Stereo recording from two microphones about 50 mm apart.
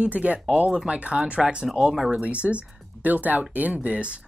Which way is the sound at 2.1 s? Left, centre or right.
Right.